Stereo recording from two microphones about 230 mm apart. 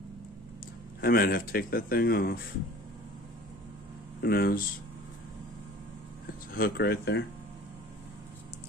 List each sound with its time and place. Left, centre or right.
1.0 s speech: left
4.2 s speech: left
6.5 s speech: left